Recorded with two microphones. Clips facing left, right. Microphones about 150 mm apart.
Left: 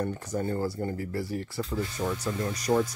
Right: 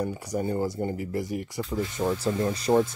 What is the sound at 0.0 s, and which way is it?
Speech, 10° right (ahead or behind).